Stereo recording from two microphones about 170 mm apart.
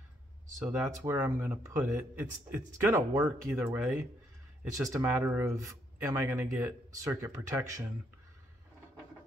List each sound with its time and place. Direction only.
0.6 s speech: 15° right (ahead or behind)